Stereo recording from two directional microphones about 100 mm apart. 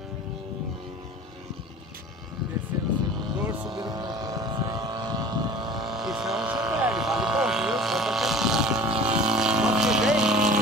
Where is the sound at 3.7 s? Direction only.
45° right (ahead or behind).